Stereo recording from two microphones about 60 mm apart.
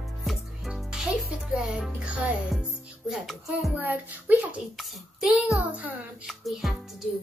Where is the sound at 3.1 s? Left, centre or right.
Centre.